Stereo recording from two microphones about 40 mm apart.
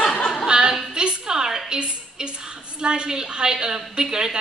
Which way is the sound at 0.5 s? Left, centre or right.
Centre.